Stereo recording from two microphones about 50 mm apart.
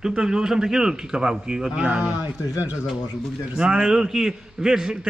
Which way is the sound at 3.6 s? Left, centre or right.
Centre.